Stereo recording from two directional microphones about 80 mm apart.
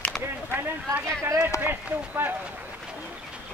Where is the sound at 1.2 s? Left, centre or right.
Right.